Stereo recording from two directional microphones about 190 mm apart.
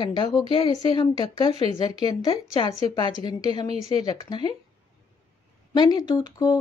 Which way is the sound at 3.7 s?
30° right (ahead or behind).